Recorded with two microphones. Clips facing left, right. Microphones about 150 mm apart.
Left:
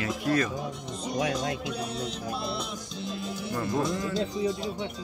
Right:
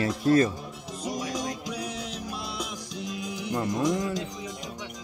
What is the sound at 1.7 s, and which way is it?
Music, 10° right (ahead or behind).